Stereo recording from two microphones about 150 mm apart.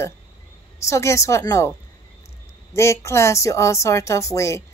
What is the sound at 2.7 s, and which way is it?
A woman's voice, 20° left (ahead or behind).